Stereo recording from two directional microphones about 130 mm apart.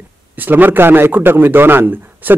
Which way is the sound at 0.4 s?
15° right (ahead or behind).